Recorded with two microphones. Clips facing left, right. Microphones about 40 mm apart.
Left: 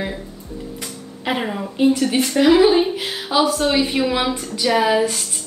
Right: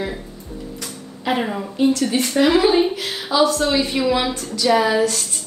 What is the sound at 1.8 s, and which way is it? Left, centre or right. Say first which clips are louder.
A woman's voice: left 1 dB; centre.